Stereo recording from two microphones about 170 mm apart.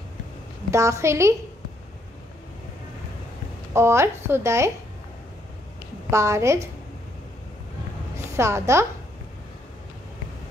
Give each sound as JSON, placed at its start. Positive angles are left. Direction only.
{"t": 0.7, "sound": "a woman's voice", "side_deg": -15}
{"t": 3.7, "sound": "a woman's voice", "side_deg": -15}
{"t": 6.0, "sound": "a woman's voice", "side_deg": -15}
{"t": 8.4, "sound": "a woman's voice", "side_deg": -15}